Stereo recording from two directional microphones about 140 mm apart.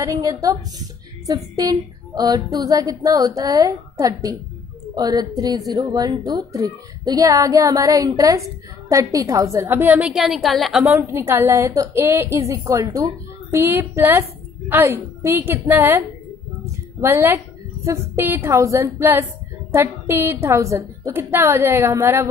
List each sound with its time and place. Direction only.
0.0 s a woman's voice: 25° right (ahead or behind)
9.9 s a woman's voice: 5° right (ahead or behind)
10.9 s a woman's voice: 15° right (ahead or behind)
17.0 s a woman's voice: 15° right (ahead or behind)